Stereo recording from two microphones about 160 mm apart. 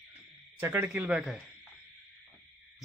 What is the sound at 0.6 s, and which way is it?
Speech, 15° right (ahead or behind).